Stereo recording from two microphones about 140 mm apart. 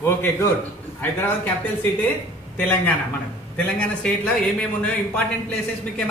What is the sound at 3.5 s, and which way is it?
A man's voice, 10° left (ahead or behind).